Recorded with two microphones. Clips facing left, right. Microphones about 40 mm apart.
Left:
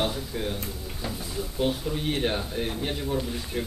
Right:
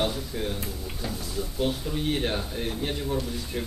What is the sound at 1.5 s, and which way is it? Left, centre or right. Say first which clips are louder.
Speech: left 1 dB; centre.